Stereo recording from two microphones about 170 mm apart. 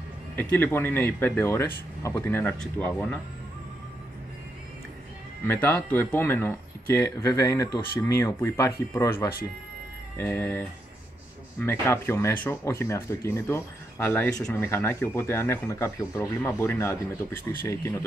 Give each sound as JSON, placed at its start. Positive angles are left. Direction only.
{"t": 0.4, "sound": "speech", "side_deg": 10}
{"t": 5.5, "sound": "speech", "side_deg": 10}